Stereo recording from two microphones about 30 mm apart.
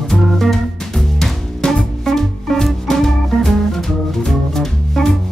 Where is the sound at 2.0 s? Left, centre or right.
Centre.